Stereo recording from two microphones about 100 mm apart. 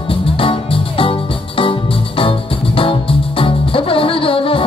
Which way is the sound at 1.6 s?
65° left (ahead or behind).